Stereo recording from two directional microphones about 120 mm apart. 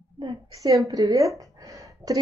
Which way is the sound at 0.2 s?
35° right (ahead or behind).